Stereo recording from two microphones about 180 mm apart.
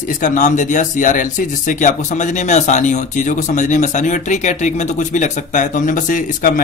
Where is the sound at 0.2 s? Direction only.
45° left (ahead or behind).